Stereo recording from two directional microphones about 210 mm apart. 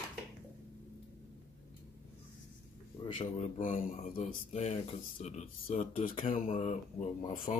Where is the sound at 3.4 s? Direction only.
40° left (ahead or behind).